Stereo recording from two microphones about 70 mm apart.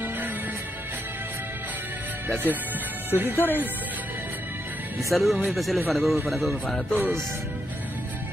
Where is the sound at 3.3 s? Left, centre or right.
Left.